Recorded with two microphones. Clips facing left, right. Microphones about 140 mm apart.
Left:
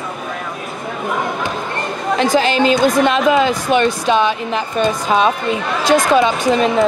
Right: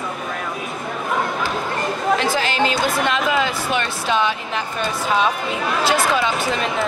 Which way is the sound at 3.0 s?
20° left (ahead or behind).